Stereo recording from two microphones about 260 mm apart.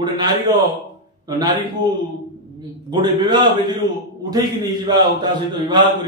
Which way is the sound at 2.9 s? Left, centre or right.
Centre.